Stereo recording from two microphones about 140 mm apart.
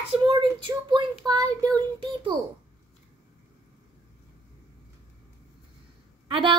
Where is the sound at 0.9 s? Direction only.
30° right (ahead or behind).